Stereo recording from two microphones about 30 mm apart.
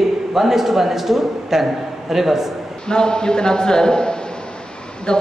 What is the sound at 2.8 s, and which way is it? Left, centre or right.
A man's voice, left.